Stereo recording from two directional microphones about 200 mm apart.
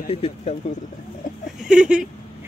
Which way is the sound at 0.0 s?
30° left (ahead or behind).